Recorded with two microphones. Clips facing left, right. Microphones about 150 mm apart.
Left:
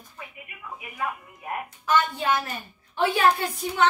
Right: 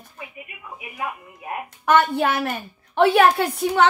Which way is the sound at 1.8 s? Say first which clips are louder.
Right 6 dB; 65° right (ahead or behind).